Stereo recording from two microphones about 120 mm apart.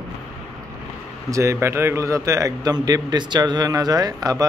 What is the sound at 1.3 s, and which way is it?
Speech, 25° right (ahead or behind).